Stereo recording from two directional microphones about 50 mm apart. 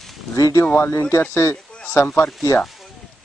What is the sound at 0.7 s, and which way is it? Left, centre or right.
Speech, left.